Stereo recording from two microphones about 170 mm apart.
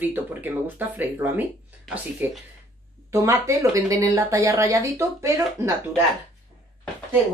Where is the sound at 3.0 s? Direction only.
15° right (ahead or behind).